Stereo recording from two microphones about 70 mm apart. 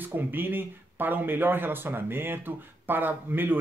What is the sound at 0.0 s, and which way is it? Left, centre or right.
Speech, right.